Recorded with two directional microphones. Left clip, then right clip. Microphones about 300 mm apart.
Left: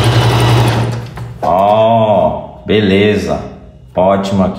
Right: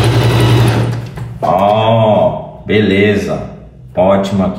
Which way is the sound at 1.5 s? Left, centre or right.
Centre.